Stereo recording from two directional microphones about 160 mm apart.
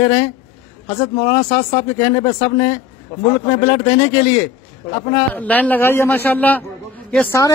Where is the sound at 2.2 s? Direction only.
25° left (ahead or behind).